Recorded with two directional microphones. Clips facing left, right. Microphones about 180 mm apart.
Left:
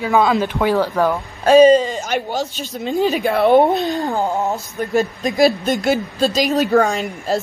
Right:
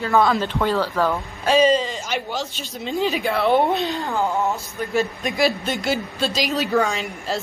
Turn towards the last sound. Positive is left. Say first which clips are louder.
# left 6 dB
turn(degrees=45)  # may be behind; listen again after turning